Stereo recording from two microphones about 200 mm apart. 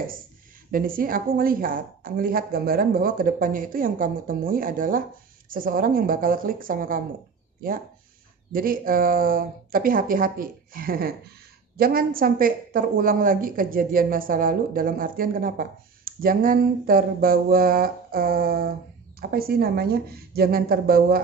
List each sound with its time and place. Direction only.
0.7 s a woman's voice: 45° right (ahead or behind)
8.5 s a woman's voice: 45° right (ahead or behind)